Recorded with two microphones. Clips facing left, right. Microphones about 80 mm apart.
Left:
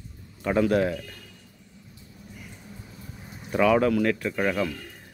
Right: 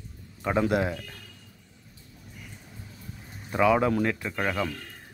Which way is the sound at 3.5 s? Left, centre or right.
Centre.